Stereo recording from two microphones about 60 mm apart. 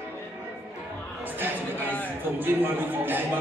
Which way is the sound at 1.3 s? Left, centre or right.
Right.